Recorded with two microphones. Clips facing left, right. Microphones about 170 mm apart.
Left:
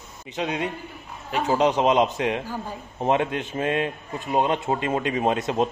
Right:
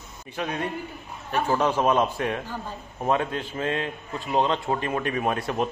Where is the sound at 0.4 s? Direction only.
20° left (ahead or behind).